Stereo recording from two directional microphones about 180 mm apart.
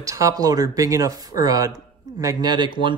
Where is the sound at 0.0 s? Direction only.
20° right (ahead or behind).